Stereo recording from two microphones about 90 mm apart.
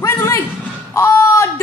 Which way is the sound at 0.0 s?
30° left (ahead or behind).